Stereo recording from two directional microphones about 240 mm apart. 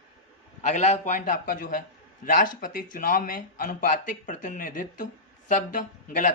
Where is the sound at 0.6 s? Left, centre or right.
Left.